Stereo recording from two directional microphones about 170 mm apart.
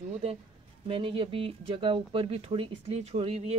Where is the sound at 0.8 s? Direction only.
30° right (ahead or behind).